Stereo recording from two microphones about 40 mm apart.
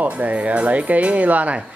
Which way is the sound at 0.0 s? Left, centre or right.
Right.